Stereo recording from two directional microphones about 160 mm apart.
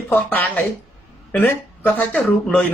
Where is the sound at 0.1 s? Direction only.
10° left (ahead or behind).